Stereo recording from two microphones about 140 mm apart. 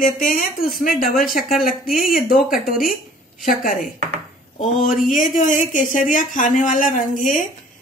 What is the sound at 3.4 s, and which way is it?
Speech, 75° left (ahead or behind).